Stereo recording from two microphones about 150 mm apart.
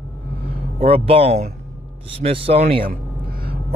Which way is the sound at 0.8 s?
40° right (ahead or behind).